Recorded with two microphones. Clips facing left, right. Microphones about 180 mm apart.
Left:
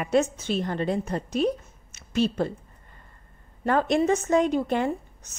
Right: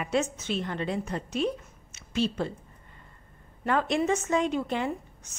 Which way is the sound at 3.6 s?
40° left (ahead or behind).